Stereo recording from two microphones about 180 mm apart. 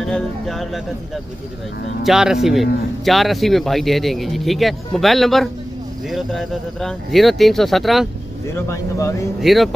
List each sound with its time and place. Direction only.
0.0 s speech: centre (ahead or behind)
2.0 s speech: centre (ahead or behind)
8.5 s speech: 15° left (ahead or behind)
9.4 s speech: centre (ahead or behind)